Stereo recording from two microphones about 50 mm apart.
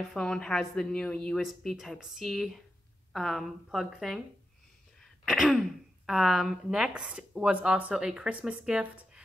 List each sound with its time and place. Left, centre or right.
0.1 s speech: centre
1.4 s a woman's voice: centre
5.2 s throat clearing: centre
6.0 s speech: centre
6.9 s speech: right